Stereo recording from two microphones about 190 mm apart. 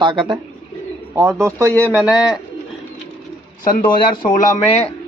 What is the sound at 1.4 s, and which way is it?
Speech, 15° right (ahead or behind).